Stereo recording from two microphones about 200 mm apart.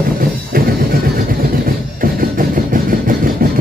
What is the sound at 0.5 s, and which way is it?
Music, 45° right (ahead or behind).